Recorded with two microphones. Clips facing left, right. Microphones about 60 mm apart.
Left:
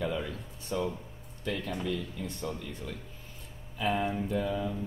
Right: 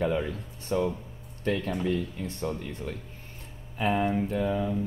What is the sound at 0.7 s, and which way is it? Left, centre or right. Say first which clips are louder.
Speech: right 5 dB; right.